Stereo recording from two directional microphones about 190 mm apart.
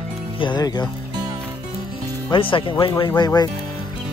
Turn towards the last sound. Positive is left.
turn(degrees=20)  # may be behind; listen again after turning